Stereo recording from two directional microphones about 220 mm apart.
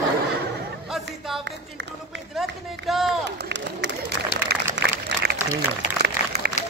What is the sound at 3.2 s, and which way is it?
Speech, 50° right (ahead or behind).